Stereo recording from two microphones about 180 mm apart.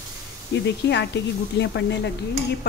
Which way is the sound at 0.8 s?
70° left (ahead or behind).